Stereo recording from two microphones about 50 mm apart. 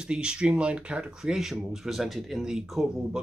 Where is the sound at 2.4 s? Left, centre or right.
Centre.